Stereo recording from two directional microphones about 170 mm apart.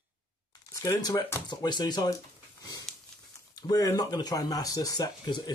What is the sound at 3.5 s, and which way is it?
Speech, 20° left (ahead or behind).